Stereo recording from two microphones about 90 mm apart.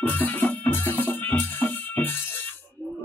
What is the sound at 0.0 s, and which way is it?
Music, 20° left (ahead or behind).